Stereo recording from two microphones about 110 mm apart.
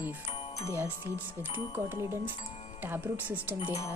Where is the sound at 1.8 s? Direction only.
20° right (ahead or behind).